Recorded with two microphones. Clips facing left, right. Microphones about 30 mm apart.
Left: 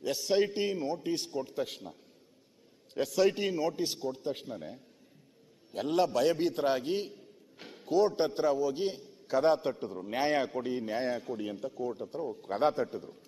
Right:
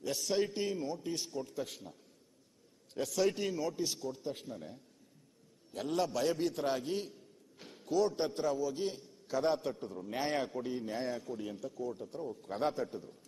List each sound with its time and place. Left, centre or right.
0.0 s a man's voice: centre
3.2 s a man's voice: left